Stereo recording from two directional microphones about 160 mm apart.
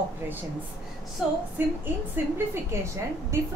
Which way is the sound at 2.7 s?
15° right (ahead or behind).